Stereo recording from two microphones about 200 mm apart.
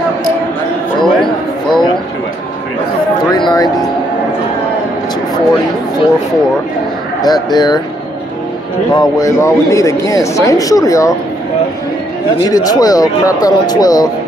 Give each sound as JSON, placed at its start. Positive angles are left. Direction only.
{"t": 1.0, "sound": "a sound", "side_deg": 0}
{"t": 3.3, "sound": "music", "side_deg": 20}
{"t": 7.2, "sound": "speech", "side_deg": 20}
{"t": 8.9, "sound": "speech", "side_deg": 20}
{"t": 12.4, "sound": "speech", "side_deg": 20}